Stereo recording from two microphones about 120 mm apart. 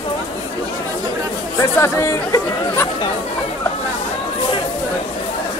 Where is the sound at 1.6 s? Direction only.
25° left (ahead or behind).